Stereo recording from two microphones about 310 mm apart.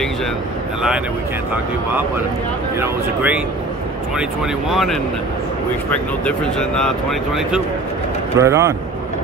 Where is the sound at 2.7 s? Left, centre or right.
Centre.